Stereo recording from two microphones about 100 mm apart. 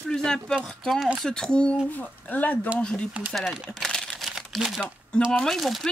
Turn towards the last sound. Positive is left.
turn(degrees=0)  # may be behind; listen again after turning